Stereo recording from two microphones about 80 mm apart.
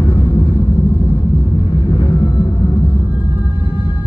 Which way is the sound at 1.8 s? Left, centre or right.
Left.